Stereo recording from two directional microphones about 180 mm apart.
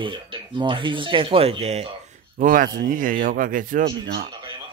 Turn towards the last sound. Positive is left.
turn(degrees=-25)  # may be behind; listen again after turning